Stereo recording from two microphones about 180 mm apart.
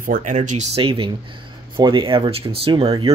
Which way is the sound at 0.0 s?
45° right (ahead or behind).